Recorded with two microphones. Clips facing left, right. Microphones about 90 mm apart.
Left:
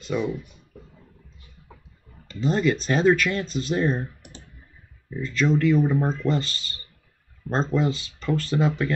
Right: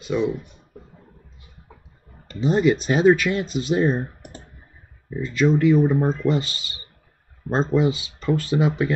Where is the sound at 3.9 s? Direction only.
45° right (ahead or behind).